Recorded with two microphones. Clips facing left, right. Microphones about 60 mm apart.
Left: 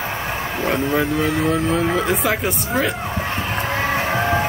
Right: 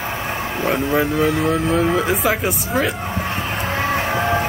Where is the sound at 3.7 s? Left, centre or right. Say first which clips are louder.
Right 1 dB; centre.